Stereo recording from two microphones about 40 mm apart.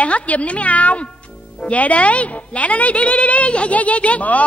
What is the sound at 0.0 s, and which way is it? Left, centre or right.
A woman's voice, left.